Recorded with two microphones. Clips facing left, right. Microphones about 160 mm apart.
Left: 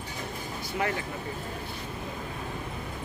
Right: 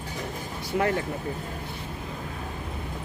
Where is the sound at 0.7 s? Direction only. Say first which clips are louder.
Right 5 dB; 55° right (ahead or behind).